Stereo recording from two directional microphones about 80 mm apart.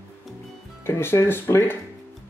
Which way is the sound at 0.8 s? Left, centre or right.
Left.